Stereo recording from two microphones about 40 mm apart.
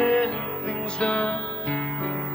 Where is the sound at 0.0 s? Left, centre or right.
Left.